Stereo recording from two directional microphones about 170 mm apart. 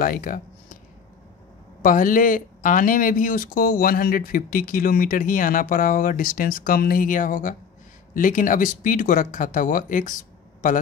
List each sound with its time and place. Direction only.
0.0 s speech: 55° left (ahead or behind)
1.8 s speech: 50° left (ahead or behind)